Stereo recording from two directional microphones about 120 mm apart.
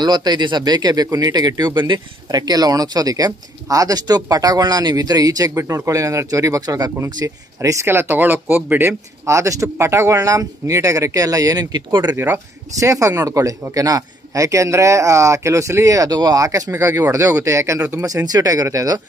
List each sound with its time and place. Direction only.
0.0 s speech: 35° right (ahead or behind)
12.2 s speech: 25° right (ahead or behind)